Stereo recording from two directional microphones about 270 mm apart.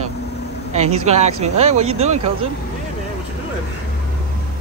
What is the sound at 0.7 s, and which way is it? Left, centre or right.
Speech, right.